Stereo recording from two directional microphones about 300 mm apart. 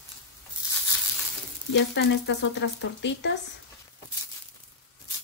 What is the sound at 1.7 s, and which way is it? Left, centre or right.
Speech, left.